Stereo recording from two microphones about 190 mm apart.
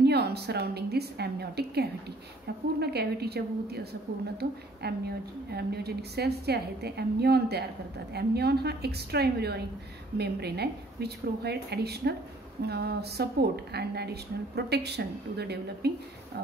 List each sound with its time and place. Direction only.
0.0 s a woman's voice: 60° right (ahead or behind)